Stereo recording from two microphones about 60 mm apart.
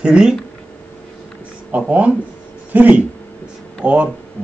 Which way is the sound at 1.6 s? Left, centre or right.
Right.